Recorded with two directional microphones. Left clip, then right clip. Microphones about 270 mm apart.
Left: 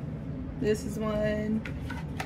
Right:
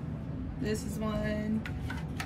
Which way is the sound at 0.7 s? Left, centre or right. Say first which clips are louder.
Left 6 dB; centre.